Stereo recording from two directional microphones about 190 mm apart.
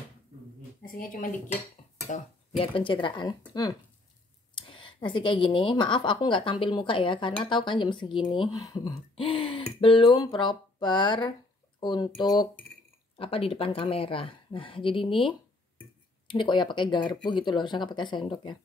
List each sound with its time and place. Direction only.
0.8 s speech: 45° left (ahead or behind)
2.0 s a woman's voice: 35° left (ahead or behind)